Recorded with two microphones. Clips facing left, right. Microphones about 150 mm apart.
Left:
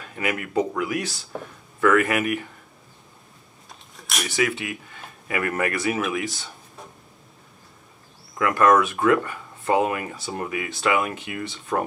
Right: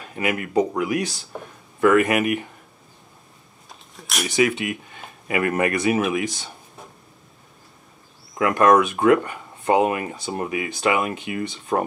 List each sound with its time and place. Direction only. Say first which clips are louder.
0.1 s speech: right 3 dB; 20° right (ahead or behind)
3.6 s a sound: right 1 dB; centre (ahead or behind)
4.3 s speech: right 5 dB; 20° right (ahead or behind)
8.4 s speech: right 2 dB; 20° right (ahead or behind)